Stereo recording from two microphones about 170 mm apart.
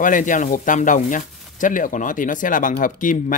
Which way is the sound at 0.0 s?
50° left (ahead or behind).